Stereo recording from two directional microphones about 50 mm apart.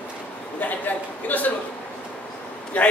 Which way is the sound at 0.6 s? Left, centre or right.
Left.